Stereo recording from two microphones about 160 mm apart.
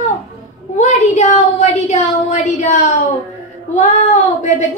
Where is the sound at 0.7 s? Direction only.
45° left (ahead or behind).